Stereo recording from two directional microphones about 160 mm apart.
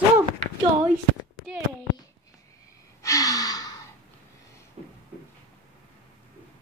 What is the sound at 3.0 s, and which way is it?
Gasp, 20° left (ahead or behind).